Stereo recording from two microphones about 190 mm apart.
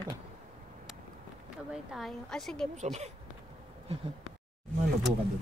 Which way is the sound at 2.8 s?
35° right (ahead or behind).